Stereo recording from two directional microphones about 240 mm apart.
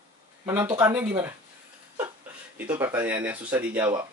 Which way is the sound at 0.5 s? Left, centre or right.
Centre.